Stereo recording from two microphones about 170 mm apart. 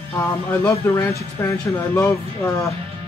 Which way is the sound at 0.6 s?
15° left (ahead or behind).